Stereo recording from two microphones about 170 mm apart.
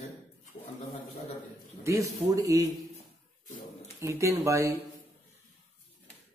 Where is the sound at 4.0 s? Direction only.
15° right (ahead or behind).